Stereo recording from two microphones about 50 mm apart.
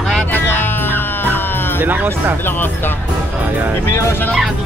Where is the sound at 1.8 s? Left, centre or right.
Right.